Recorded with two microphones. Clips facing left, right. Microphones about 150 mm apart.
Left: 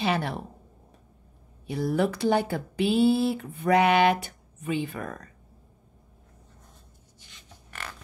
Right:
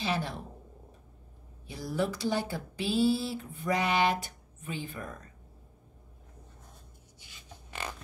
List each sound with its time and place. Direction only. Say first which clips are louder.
0.0 s speech: left 5 dB; 65° left (ahead or behind)
1.7 s speech: left 6 dB; 65° left (ahead or behind)
7.2 s a sound: right 1 dB; 15° right (ahead or behind)